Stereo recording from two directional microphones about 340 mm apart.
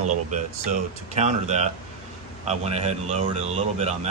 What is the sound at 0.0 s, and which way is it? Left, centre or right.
A man's voice, right.